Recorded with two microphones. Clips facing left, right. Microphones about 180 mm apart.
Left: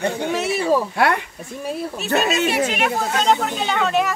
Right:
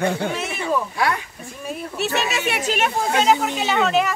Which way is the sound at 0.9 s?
60° left (ahead or behind).